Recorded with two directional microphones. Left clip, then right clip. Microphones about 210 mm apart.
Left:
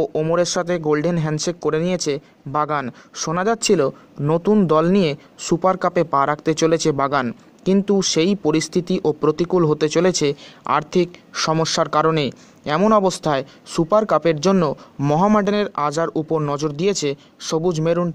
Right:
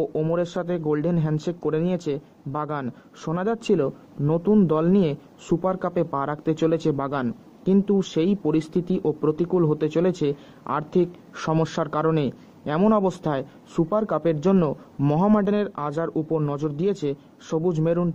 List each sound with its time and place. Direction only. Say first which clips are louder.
0.3 s speech: left 6 dB; 20° left (ahead or behind)